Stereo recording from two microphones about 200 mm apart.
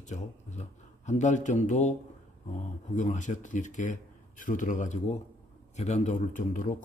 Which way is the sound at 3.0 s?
40° left (ahead or behind).